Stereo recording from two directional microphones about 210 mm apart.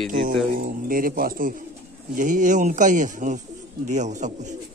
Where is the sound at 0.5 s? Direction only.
40° right (ahead or behind).